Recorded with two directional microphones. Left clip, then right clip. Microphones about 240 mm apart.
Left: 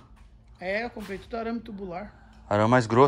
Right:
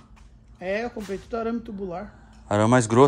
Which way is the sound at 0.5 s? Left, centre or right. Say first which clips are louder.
Right 2 dB; centre.